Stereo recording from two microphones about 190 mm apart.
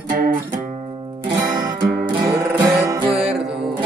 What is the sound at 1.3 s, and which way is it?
Music, 20° right (ahead or behind).